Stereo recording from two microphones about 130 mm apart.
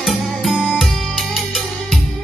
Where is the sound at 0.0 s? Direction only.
Centre (ahead or behind).